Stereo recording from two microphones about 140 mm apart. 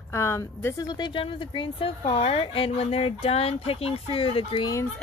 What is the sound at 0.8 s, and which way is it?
A woman's voice, 30° left (ahead or behind).